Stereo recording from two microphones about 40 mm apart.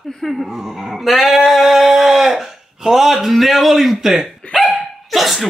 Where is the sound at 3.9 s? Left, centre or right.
Centre.